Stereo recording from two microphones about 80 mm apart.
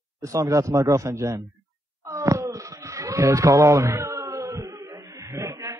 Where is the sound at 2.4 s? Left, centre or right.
Right.